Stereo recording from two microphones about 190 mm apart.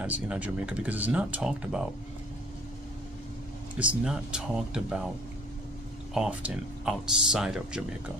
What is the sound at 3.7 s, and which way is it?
Speech, 5° right (ahead or behind).